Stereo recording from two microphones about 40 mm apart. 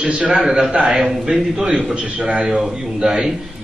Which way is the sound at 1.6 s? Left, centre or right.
Right.